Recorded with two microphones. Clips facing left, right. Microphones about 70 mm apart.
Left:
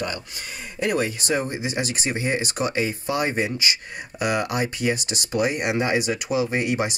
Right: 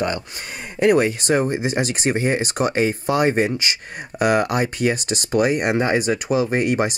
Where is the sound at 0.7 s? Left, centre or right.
Right.